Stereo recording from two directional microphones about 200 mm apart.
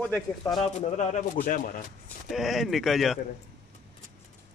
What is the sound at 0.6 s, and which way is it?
Speech, 35° left (ahead or behind).